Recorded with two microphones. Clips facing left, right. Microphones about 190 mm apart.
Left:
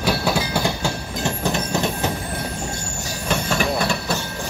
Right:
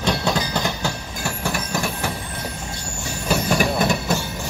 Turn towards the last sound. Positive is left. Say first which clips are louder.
# right 2 dB
turn(degrees=-15)  # may be behind; listen again after turning